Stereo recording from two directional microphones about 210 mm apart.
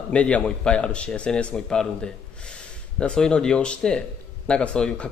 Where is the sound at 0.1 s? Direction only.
5° left (ahead or behind).